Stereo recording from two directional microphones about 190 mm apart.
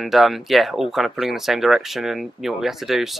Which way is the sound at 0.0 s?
Centre (ahead or behind).